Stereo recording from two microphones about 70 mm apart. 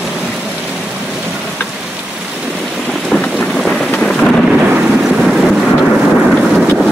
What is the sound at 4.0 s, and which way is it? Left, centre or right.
Thunder, centre.